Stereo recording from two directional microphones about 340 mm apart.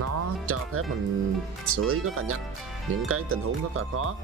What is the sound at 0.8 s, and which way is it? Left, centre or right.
Speech, right.